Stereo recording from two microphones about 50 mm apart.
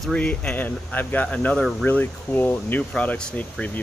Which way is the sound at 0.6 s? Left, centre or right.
Left.